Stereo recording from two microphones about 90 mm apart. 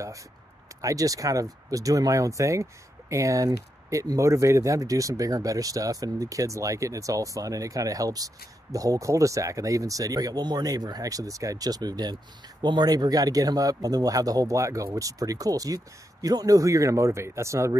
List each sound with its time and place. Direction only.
0.7 s speech: 40° right (ahead or behind)